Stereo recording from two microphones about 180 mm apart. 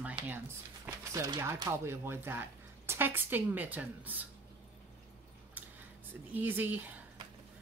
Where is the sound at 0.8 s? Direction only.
20° right (ahead or behind).